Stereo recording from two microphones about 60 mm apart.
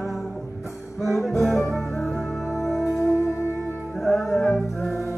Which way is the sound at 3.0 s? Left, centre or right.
Left.